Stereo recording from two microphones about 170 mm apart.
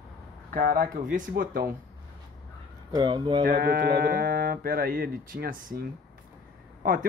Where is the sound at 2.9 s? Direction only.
25° right (ahead or behind).